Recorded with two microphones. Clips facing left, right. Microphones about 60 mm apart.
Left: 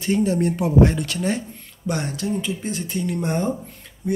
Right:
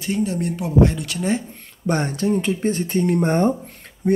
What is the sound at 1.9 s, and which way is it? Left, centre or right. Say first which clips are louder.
Speech: right 4 dB; right.